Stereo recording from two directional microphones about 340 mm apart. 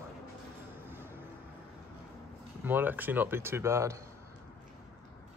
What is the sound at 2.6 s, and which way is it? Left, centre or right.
A man's voice, centre.